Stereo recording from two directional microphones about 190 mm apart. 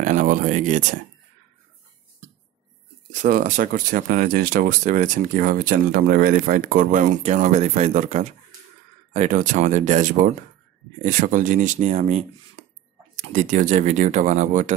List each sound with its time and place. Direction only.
0.0 s speech: 40° right (ahead or behind)
3.1 s speech: 40° right (ahead or behind)